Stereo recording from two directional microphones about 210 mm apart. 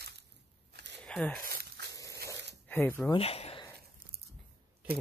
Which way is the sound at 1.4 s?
50° right (ahead or behind).